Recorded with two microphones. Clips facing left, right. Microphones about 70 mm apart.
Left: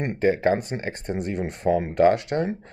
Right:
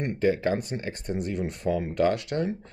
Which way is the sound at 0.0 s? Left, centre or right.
Left.